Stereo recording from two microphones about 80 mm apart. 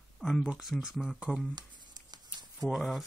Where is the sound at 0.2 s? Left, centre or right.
Centre.